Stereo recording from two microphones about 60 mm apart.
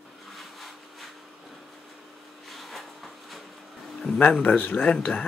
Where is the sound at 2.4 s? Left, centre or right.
Centre.